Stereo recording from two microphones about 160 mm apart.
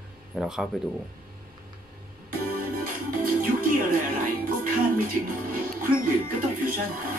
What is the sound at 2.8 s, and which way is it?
Music, 60° right (ahead or behind).